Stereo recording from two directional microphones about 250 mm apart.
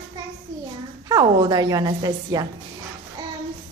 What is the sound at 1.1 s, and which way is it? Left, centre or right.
A woman's voice, centre.